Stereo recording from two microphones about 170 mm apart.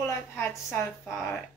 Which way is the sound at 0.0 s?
15° left (ahead or behind).